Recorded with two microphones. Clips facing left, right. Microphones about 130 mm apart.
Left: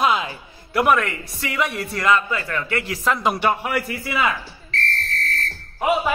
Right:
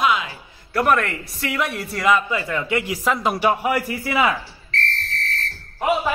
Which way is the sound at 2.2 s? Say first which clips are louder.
Right 2 dB; 15° right (ahead or behind).